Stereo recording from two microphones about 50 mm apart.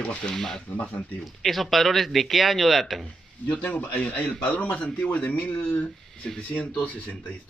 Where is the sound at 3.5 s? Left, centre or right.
Left.